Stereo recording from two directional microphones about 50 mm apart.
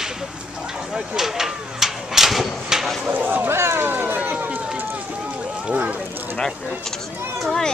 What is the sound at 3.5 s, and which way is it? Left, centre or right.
Run, right.